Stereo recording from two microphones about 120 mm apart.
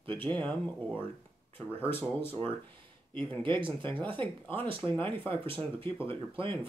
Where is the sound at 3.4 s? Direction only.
45° right (ahead or behind).